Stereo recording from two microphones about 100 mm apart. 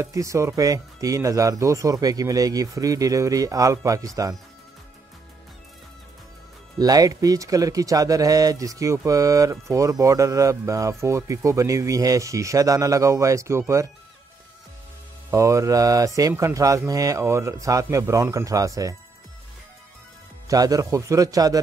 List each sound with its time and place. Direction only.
0.0 s speech: 30° right (ahead or behind)
6.8 s speech: 40° right (ahead or behind)
15.3 s speech: 30° right (ahead or behind)
20.4 s speech: 40° right (ahead or behind)